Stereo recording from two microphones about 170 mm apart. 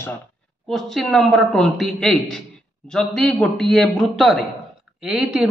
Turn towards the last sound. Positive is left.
turn(degrees=0)  # may be behind; listen again after turning